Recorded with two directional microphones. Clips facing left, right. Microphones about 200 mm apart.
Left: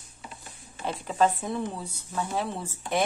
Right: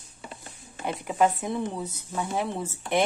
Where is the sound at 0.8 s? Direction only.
15° right (ahead or behind).